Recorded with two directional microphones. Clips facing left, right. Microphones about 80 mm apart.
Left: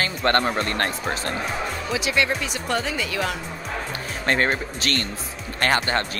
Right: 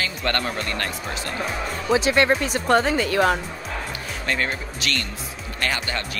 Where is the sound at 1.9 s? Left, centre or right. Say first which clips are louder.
Right 6 dB; right.